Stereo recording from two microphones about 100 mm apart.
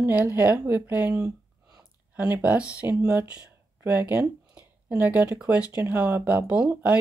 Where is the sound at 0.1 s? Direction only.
20° right (ahead or behind).